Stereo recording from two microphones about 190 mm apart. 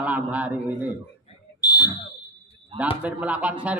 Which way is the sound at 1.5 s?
20° left (ahead or behind).